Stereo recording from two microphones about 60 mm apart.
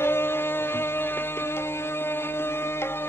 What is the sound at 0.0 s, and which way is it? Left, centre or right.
Music, left.